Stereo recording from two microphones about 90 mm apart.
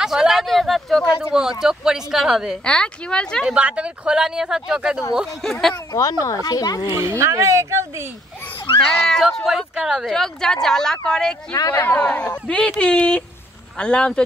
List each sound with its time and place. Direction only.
0.0 s speech: 5° right (ahead or behind)
2.6 s speech: 10° left (ahead or behind)
3.4 s speech: 10° right (ahead or behind)
5.4 s speech: 5° left (ahead or behind)
5.9 s speech: 40° left (ahead or behind)
6.9 s speech: 30° right (ahead or behind)
9.0 s speech: 5° left (ahead or behind)
10.1 s speech: 5° left (ahead or behind)
11.5 s speech: 45° left (ahead or behind)
11.8 s speech: 20° left (ahead or behind)